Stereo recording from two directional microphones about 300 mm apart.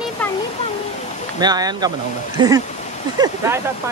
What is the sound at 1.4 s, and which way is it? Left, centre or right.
Speech, centre.